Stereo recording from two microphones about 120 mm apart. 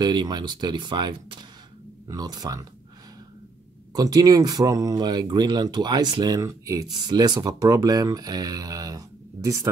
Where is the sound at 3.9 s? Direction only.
30° right (ahead or behind).